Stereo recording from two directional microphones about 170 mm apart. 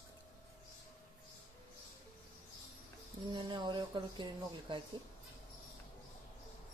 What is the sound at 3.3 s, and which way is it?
Speech, 25° right (ahead or behind).